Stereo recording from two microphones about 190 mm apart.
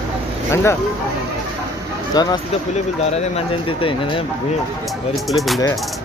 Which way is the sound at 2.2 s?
20° left (ahead or behind).